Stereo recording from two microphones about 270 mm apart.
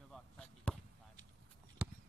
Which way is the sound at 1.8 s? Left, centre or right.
Centre.